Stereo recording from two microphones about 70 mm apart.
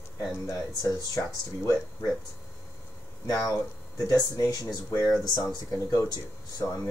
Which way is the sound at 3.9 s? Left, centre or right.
Left.